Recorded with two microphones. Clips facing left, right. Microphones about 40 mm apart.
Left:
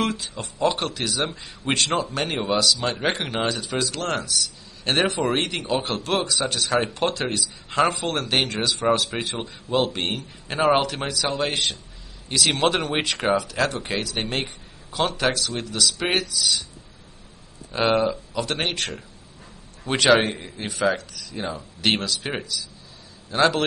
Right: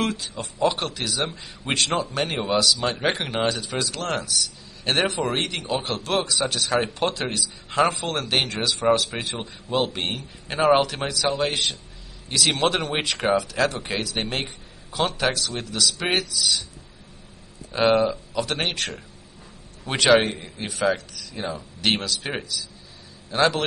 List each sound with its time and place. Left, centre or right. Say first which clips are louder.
0.0 s speech: left 1 dB; centre
17.6 s speech: right 1 dB; centre